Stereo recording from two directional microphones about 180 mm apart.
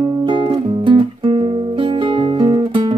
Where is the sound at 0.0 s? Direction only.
25° right (ahead or behind).